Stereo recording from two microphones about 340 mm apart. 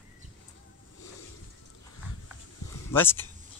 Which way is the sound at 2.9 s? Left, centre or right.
Centre.